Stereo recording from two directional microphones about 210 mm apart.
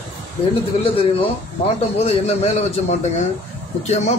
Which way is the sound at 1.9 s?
30° left (ahead or behind).